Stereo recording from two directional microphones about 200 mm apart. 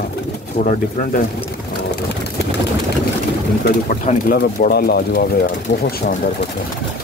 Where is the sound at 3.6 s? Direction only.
40° left (ahead or behind).